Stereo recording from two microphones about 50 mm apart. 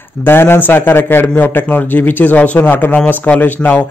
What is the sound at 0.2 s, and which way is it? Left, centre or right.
A man's voice, left.